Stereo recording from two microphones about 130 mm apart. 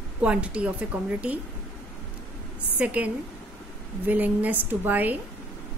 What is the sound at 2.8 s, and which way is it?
A woman's voice, 10° right (ahead or behind).